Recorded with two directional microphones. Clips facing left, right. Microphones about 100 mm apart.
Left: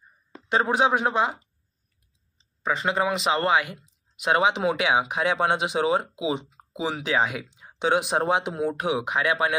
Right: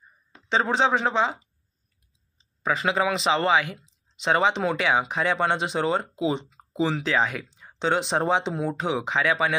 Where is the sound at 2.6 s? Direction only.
Centre (ahead or behind).